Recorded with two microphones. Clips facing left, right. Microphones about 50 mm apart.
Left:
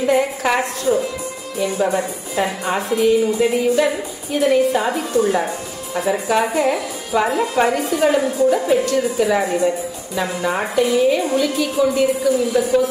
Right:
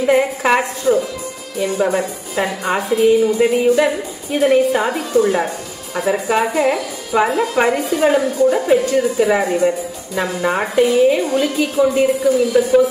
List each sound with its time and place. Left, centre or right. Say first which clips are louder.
0.0 s a sound: right 2 dB; right
0.9 s a woman's voice: right 3 dB; centre
10.1 s speech: right 3 dB; right
10.6 s a woman's voice: right 3 dB; right